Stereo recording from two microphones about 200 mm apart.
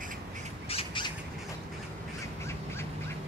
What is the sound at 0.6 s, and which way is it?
Squawk, 25° left (ahead or behind).